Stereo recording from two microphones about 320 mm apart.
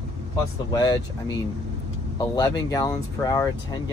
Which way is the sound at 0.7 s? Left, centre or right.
Centre.